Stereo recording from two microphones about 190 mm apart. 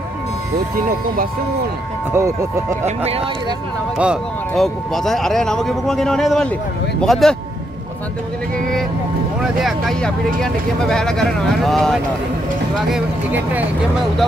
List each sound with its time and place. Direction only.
2.1 s speech: 15° right (ahead or behind)
3.0 s speech: 30° right (ahead or behind)
4.0 s speech: centre (ahead or behind)
9.4 s speech: centre (ahead or behind)